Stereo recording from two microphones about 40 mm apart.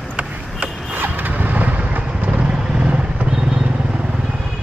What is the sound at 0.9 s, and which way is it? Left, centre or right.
Vehicle, right.